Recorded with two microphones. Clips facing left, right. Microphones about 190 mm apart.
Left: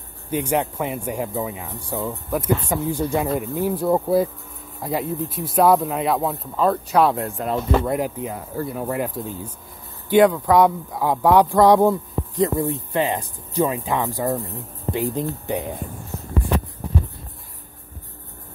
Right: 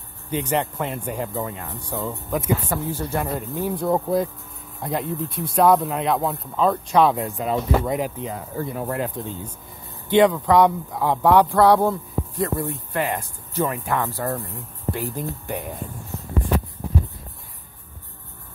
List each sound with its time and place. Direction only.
0.3 s speech: 10° left (ahead or behind)